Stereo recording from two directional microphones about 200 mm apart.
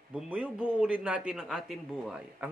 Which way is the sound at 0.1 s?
5° right (ahead or behind).